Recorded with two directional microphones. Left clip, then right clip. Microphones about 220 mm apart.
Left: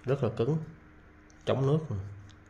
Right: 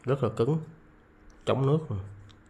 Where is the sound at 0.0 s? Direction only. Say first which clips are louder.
Right 2 dB; 10° right (ahead or behind).